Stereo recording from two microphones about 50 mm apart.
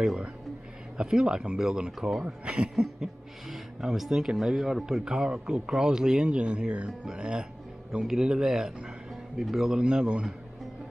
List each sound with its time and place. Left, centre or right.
0.9 s speech: centre
2.2 s speech: right
2.7 s speech: centre